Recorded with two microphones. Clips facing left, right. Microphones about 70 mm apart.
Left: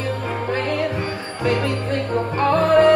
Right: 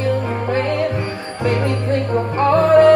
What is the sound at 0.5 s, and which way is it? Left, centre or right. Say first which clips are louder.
Music: right 3 dB; right.